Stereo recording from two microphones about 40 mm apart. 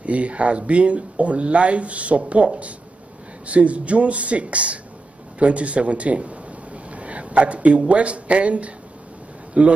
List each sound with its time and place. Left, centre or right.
0.0 s speech: right
5.4 s a sound: right
7.9 s speech: right